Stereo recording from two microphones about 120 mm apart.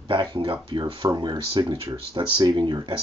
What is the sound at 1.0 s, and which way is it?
Speech, 35° right (ahead or behind).